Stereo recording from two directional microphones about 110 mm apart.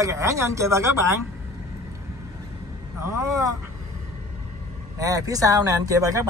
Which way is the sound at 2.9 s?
25° right (ahead or behind).